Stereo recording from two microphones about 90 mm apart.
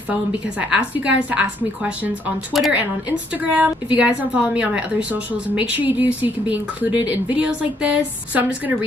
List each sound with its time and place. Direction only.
0.1 s a woman's voice: 15° right (ahead or behind)